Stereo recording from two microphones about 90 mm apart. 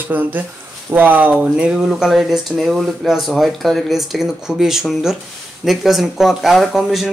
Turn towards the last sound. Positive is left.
turn(degrees=0)  # may be behind; listen again after turning